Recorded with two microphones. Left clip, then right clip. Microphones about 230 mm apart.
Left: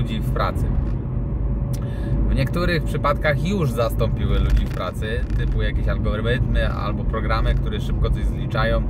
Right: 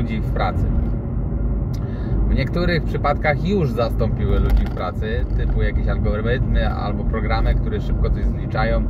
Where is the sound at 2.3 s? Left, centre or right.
Centre.